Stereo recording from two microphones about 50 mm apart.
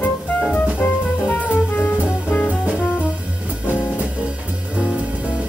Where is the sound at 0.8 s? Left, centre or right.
Left.